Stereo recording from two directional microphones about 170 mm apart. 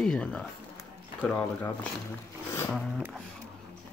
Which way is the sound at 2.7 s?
5° right (ahead or behind).